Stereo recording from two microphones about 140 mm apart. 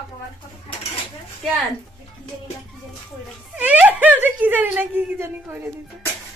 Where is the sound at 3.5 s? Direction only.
10° right (ahead or behind).